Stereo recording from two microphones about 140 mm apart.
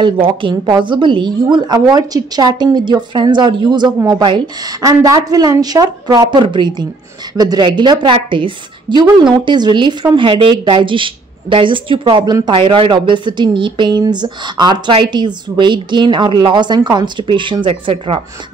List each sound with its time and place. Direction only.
0.0 s a woman's voice: 35° right (ahead or behind)